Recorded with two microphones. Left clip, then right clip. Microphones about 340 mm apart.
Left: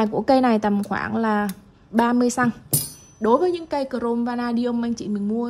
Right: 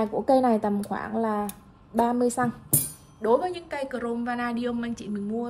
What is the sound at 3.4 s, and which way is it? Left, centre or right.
A woman's voice, centre.